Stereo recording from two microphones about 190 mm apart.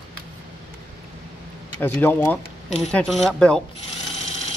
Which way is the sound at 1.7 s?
10° left (ahead or behind).